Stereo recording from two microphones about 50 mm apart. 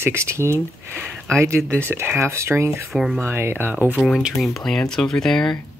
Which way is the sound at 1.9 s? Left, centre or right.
Right.